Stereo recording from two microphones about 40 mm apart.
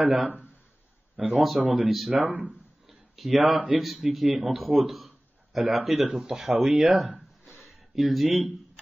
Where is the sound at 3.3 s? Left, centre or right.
Centre.